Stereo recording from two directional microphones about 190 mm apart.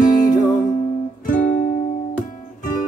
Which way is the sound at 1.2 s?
45° left (ahead or behind).